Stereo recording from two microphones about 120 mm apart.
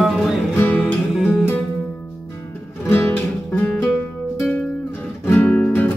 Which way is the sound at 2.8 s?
20° left (ahead or behind).